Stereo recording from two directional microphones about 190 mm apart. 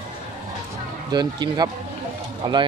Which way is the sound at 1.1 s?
20° right (ahead or behind).